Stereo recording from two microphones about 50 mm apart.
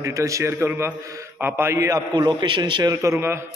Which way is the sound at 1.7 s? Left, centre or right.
Right.